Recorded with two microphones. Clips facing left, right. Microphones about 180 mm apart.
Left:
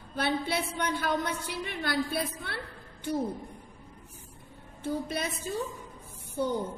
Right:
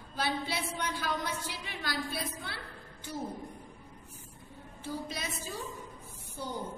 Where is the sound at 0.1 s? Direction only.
60° left (ahead or behind).